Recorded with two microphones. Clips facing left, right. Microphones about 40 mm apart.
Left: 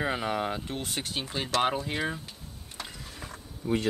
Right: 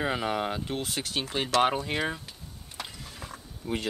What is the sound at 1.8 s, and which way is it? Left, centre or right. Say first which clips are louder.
Speech: right 1 dB; right.